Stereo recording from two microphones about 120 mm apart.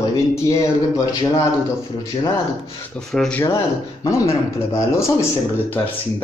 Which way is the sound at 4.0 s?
25° left (ahead or behind).